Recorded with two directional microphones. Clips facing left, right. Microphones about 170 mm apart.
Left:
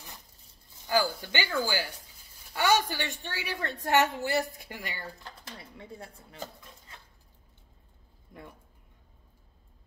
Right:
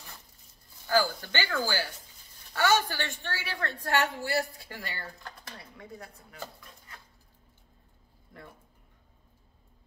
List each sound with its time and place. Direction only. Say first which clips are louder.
0.8 s a woman's voice: right 1 dB; 15° left (ahead or behind)